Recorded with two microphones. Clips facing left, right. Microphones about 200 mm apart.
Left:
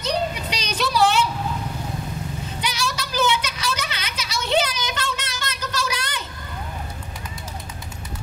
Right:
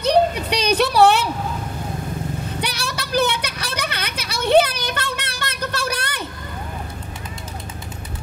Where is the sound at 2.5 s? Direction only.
60° right (ahead or behind).